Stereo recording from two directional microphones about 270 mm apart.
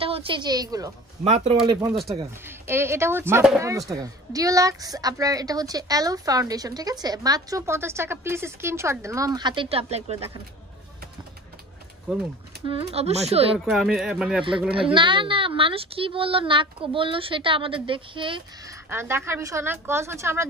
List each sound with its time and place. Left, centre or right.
0.0 s a woman's voice: right
1.2 s a woman's voice: right
2.0 s a woman's voice: centre; by 10.3 s right
12.6 s a woman's voice: right
13.7 s speech: centre
14.8 s a woman's voice: centre